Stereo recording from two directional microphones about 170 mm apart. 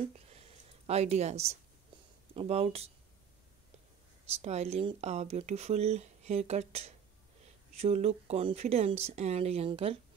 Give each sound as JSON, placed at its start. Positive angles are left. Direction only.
{"t": 0.3, "sound": "a sound", "side_deg": -40}
{"t": 2.3, "sound": "speech", "side_deg": -35}
{"t": 4.4, "sound": "speech", "side_deg": -40}